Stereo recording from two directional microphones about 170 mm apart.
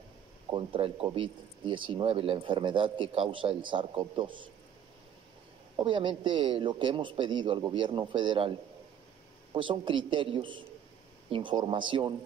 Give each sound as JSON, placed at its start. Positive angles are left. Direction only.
{"t": 0.5, "sound": "speech", "side_deg": -30}
{"t": 5.8, "sound": "speech", "side_deg": -30}